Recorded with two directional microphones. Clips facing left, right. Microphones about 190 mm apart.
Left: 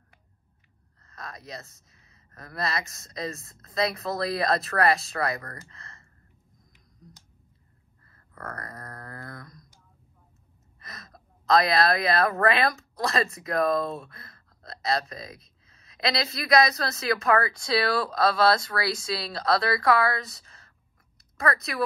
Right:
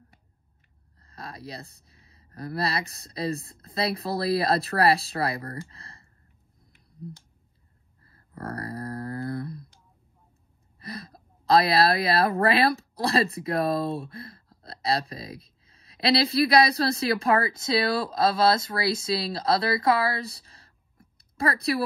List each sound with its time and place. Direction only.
1.0 s speech: 30° right (ahead or behind)
8.0 s a sound: 30° right (ahead or behind)
10.8 s a woman's voice: 30° right (ahead or behind)